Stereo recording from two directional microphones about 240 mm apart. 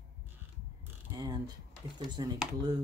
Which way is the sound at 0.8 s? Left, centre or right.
Centre.